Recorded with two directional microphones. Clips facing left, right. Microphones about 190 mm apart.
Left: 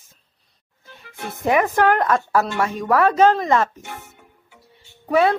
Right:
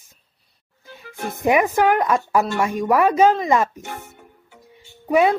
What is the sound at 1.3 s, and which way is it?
Speech, 15° right (ahead or behind).